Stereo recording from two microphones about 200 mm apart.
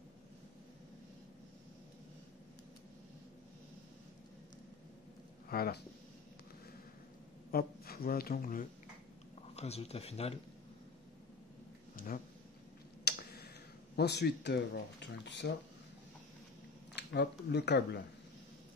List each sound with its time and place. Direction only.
5.5 s speech: 50° left (ahead or behind)
7.5 s speech: 50° left (ahead or behind)
9.6 s speech: 30° left (ahead or behind)
11.9 s a sound: 45° left (ahead or behind)
13.9 s speech: 55° left (ahead or behind)
16.9 s speech: 55° left (ahead or behind)